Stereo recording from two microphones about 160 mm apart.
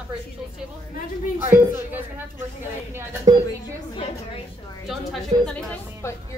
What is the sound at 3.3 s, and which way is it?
Speech, 25° right (ahead or behind).